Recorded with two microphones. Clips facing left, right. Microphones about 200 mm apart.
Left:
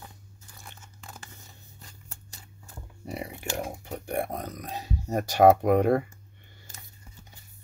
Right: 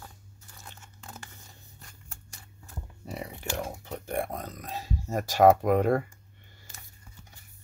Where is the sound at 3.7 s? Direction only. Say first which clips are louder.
Left 1 dB; 15° left (ahead or behind).